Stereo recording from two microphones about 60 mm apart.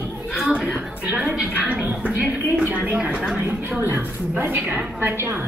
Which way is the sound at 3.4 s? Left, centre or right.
Right.